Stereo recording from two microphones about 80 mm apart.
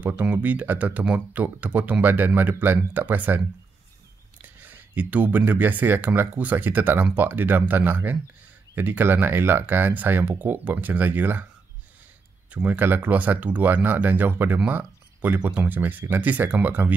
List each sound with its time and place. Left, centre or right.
0.0 s speech: right
12.4 s speech: right